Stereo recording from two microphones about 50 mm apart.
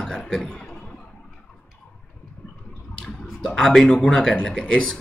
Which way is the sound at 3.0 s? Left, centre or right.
Centre.